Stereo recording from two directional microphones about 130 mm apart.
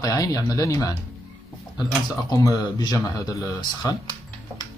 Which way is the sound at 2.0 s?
30° left (ahead or behind).